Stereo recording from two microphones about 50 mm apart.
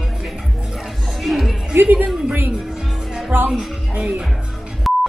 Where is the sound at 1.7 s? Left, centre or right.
Right.